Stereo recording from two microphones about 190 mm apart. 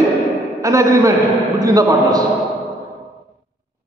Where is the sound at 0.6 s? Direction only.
15° right (ahead or behind).